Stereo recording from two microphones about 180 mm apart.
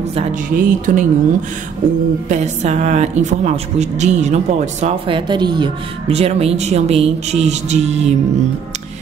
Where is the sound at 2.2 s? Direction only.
40° right (ahead or behind).